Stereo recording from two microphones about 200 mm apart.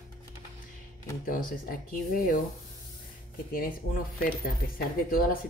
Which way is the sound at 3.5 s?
45° left (ahead or behind).